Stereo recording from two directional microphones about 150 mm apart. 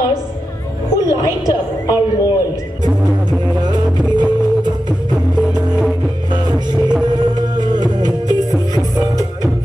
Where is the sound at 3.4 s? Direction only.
30° right (ahead or behind).